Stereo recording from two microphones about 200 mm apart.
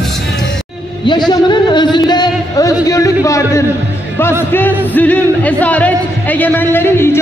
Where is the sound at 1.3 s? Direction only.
20° left (ahead or behind).